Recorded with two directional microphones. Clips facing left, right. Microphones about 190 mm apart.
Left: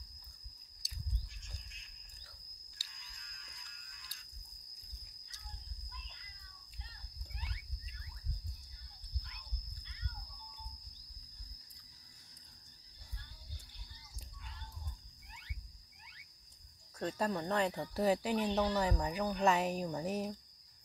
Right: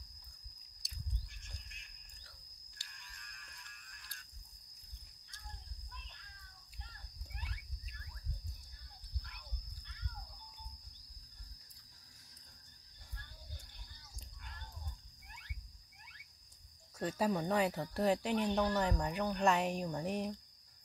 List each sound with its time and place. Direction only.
0.8 s a sound: centre (ahead or behind)
2.9 s music: 55° right (ahead or behind)
17.0 s speech: 10° right (ahead or behind)